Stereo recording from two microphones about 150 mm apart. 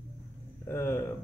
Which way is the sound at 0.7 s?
15° left (ahead or behind).